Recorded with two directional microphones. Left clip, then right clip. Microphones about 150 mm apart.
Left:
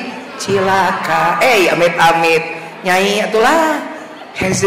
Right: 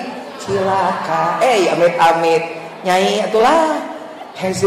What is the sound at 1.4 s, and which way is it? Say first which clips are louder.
A man's voice: even; 10° left (ahead or behind).